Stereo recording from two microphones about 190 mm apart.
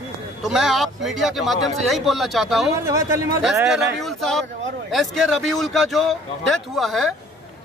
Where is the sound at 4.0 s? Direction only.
Centre (ahead or behind).